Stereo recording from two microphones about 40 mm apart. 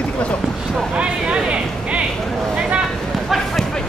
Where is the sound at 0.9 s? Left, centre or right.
Right.